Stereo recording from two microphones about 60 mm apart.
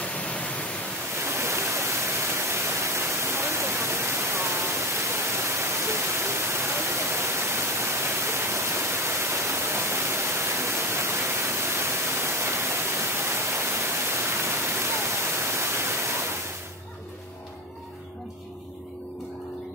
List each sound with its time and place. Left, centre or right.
0.0 s pink noise: left
1.2 s waterfall: right